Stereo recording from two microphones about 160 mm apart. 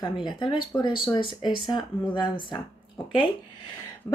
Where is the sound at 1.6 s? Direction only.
30° left (ahead or behind).